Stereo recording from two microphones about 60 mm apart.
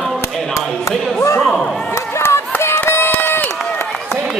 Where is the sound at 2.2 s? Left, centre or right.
Left.